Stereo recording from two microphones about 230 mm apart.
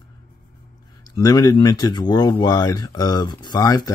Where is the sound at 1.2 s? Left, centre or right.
Centre.